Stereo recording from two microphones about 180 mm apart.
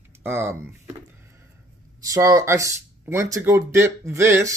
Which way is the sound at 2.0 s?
20° right (ahead or behind).